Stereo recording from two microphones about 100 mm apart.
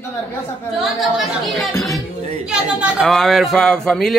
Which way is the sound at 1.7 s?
30° left (ahead or behind).